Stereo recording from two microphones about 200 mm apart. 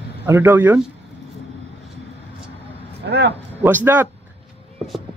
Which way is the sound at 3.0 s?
60° right (ahead or behind).